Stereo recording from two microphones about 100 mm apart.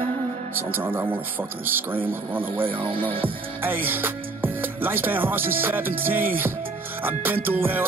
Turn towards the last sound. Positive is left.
turn(degrees=-20)  # may be behind; listen again after turning